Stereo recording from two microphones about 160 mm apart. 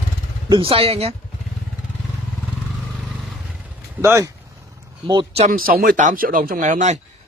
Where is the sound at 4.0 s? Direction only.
20° right (ahead or behind).